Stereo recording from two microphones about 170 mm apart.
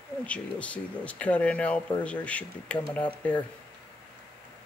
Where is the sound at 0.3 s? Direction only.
5° left (ahead or behind).